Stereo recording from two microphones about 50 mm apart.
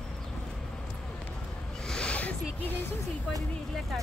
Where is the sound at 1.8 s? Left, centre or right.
Centre.